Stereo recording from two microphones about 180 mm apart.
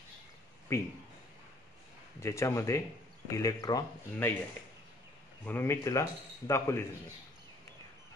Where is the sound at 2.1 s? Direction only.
15° left (ahead or behind).